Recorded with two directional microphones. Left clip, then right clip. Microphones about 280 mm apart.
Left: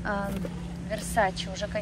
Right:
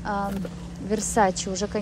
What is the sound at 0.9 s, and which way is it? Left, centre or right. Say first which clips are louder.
Speech: right 5 dB; right.